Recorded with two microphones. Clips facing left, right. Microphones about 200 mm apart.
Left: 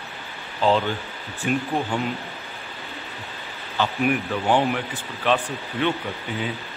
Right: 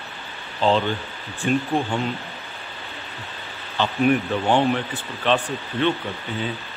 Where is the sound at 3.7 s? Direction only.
10° left (ahead or behind).